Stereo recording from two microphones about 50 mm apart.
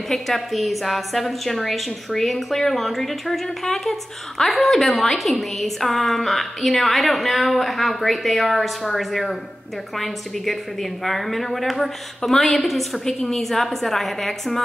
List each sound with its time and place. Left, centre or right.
0.1 s a woman's voice: centre